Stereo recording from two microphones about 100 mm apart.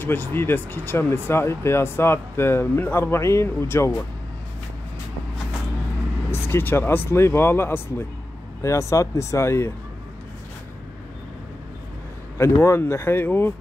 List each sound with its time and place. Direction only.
0.0 s speech: 20° left (ahead or behind)
6.3 s speech: 25° left (ahead or behind)
12.4 s speech: 25° left (ahead or behind)